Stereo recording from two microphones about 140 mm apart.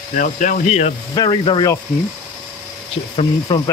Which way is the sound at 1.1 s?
30° left (ahead or behind).